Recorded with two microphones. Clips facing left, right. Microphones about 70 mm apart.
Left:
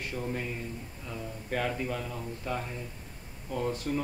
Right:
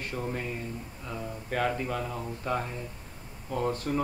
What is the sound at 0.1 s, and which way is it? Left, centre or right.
Speech, right.